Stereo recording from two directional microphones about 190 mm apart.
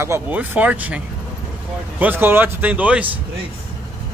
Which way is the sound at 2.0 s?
10° right (ahead or behind).